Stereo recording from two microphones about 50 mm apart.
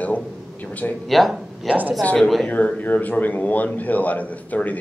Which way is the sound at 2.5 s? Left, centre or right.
Left.